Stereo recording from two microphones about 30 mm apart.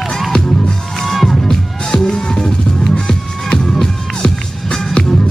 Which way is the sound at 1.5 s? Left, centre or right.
Centre.